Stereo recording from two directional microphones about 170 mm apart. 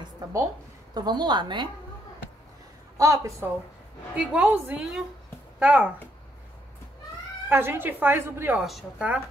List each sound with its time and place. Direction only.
0.0 s a sound: 20° right (ahead or behind)
0.9 s a woman's voice: 25° right (ahead or behind)
3.0 s speech: 20° right (ahead or behind)
4.1 s speech: 5° right (ahead or behind)
7.4 s a woman's voice: 15° right (ahead or behind)